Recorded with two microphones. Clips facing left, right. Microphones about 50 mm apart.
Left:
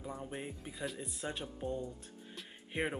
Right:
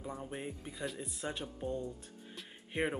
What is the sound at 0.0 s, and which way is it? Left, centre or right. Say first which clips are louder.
Speech: right 1 dB; centre.